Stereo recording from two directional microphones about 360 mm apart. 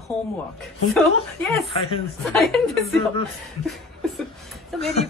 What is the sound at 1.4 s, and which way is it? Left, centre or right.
A woman's voice, centre.